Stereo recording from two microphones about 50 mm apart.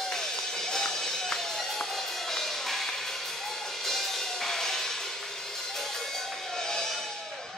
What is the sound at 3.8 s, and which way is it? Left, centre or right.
Music, centre.